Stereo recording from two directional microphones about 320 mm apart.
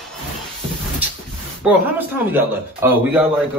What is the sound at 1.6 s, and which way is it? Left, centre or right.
A man's voice, centre.